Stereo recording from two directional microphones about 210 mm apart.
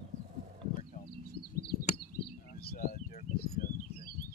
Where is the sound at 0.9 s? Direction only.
50° left (ahead or behind).